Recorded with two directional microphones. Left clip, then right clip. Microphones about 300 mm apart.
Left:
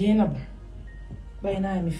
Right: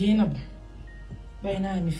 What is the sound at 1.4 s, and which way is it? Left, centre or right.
Speech, centre.